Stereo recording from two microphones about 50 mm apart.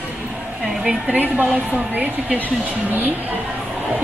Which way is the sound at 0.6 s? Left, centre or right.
Centre.